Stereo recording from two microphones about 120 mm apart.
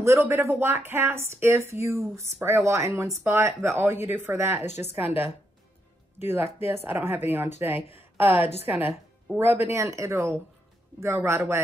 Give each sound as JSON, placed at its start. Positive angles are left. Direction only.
{"t": 0.0, "sound": "a woman's voice", "side_deg": -25}